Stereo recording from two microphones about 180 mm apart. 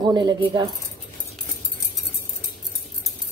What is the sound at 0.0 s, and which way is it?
Speech, 25° right (ahead or behind).